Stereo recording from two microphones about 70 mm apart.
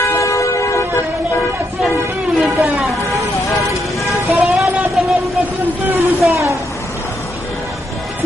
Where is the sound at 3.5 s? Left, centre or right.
Left.